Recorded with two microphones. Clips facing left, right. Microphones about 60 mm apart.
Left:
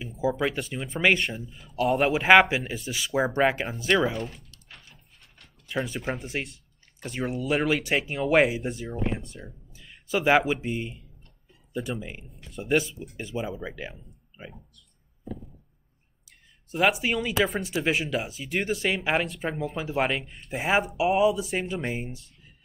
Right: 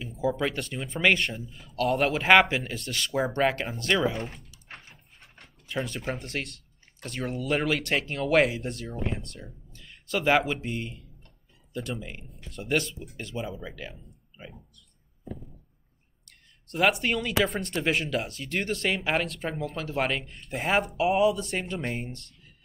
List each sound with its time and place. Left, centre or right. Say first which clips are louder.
0.0 s speech: left 1 dB; centre
5.7 s speech: left 2 dB; centre
13.6 s speech: left 3 dB; centre
13.9 s a sound: left 2 dB; centre
16.3 s speech: left 3 dB; centre